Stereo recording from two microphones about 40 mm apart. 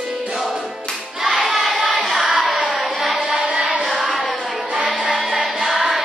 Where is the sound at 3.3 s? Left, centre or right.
Centre.